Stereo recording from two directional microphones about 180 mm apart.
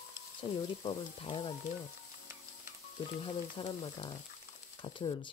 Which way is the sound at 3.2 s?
25° left (ahead or behind).